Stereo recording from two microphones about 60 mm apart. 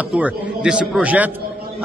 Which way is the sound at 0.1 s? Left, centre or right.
Centre.